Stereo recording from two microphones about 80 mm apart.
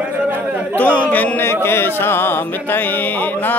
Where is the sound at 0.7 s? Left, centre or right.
Centre.